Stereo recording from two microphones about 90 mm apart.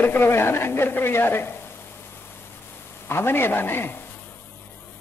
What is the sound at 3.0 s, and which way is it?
Speech, 25° left (ahead or behind).